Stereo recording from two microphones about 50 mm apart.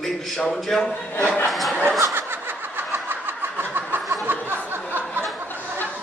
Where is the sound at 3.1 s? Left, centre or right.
Right.